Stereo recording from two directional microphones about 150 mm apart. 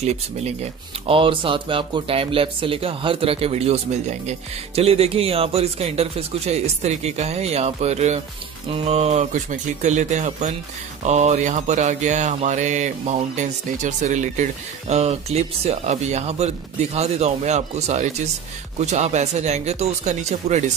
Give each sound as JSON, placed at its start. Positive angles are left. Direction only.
{"t": 0.0, "sound": "mantra", "side_deg": -50}
{"t": 1.0, "sound": "speech", "side_deg": -35}
{"t": 8.7, "sound": "mantra", "side_deg": -45}